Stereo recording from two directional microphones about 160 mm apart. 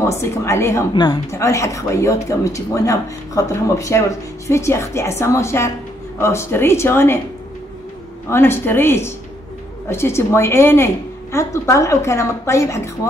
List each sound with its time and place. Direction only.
0.0 s a woman's voice: 20° left (ahead or behind)
8.3 s a woman's voice: 15° left (ahead or behind)